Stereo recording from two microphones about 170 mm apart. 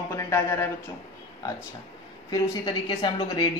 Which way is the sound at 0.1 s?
15° left (ahead or behind).